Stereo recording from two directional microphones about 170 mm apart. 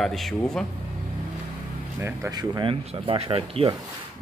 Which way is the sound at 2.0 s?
15° right (ahead or behind).